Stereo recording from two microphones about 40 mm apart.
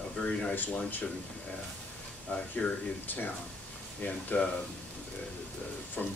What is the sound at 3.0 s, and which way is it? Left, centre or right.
Speech, left.